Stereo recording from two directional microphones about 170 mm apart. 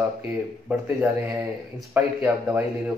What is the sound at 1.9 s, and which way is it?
Speech, 10° right (ahead or behind).